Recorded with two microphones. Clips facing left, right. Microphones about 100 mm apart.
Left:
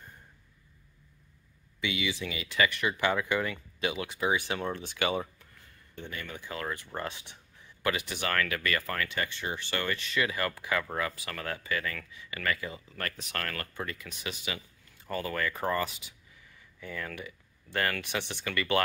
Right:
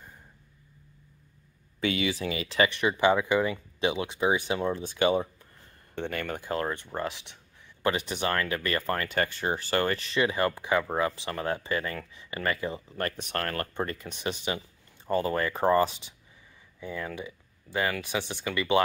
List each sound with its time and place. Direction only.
1.8 s speech: 45° right (ahead or behind); by 5.5 s 20° right (ahead or behind)
5.9 s speech: 65° right (ahead or behind); by 6.7 s 45° right (ahead or behind)
6.7 s speech: 20° right (ahead or behind)
7.0 s speech: 5° right (ahead or behind)
7.8 s speech: 30° right (ahead or behind)
16.8 s speech: 20° right (ahead or behind)